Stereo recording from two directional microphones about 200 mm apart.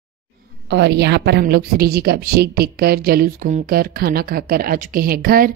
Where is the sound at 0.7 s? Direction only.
60° right (ahead or behind).